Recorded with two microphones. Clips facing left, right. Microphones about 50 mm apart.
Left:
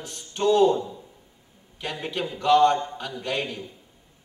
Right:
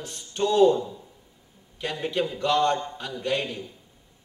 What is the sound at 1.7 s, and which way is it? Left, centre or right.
A man's voice, centre.